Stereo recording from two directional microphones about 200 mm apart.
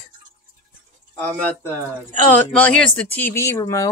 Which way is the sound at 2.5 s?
5° left (ahead or behind).